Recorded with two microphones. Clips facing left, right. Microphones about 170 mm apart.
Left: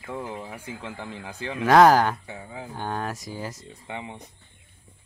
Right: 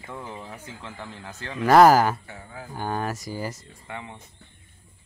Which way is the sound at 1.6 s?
Centre (ahead or behind).